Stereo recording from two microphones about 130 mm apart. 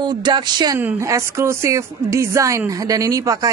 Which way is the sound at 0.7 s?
20° right (ahead or behind).